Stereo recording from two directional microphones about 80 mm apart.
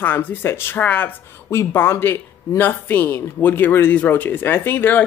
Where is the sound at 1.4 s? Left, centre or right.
Left.